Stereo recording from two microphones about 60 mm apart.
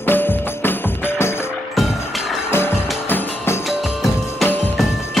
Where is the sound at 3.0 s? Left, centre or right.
Left.